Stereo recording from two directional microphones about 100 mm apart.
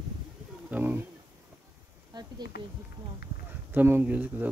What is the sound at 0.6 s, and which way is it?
Speech, 20° right (ahead or behind).